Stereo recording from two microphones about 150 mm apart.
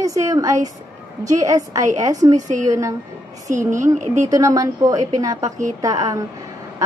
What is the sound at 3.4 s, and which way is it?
Speech, 55° right (ahead or behind).